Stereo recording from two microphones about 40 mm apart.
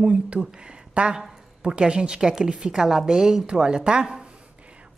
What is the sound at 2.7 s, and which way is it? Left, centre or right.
A woman's voice, centre.